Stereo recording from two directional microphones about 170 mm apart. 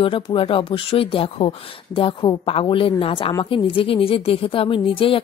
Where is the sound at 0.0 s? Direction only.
30° left (ahead or behind).